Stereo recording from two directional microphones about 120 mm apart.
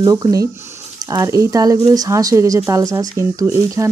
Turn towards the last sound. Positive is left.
turn(degrees=-25)  # may be behind; listen again after turning